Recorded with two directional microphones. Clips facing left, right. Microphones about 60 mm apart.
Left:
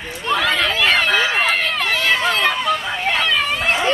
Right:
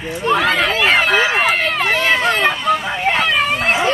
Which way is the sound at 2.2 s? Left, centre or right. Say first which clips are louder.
Right 2 dB; centre.